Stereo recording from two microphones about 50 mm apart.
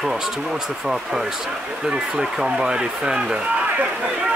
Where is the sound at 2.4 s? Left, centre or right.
Centre.